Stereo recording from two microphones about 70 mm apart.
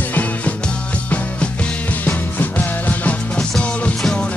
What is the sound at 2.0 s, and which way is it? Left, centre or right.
Music, left.